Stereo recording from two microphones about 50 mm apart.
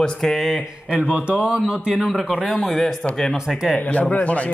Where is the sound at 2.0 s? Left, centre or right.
Centre.